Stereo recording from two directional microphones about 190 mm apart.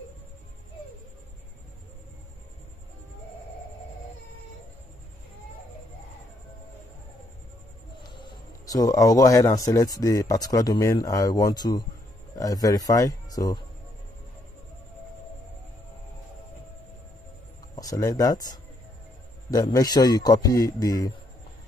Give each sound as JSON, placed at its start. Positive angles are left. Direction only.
{"t": 8.0, "sound": "a man's voice", "side_deg": 25}
{"t": 17.7, "sound": "a man's voice", "side_deg": 20}